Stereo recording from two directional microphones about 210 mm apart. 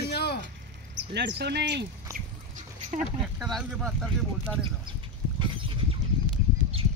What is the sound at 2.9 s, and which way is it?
Dog, 35° right (ahead or behind).